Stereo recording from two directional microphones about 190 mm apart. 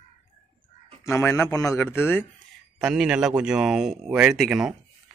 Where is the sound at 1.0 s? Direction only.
15° left (ahead or behind).